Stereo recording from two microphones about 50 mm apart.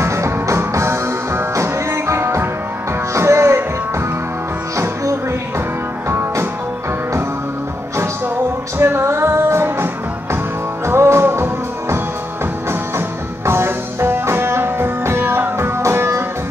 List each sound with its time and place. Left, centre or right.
0.0 s music: right
6.0 s music: right
8.7 s music: right
10.9 s music: right
13.5 s music: right
15.8 s music: right